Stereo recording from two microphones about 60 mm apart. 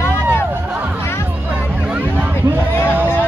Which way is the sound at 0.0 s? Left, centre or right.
Left.